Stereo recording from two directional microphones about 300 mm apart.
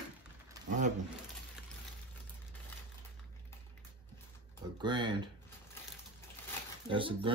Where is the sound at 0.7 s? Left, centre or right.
Right.